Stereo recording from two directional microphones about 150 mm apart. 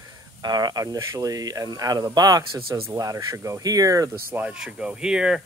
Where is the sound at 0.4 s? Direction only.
25° right (ahead or behind).